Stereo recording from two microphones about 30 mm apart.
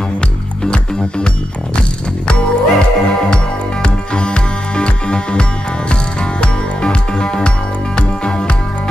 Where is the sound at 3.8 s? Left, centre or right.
Left.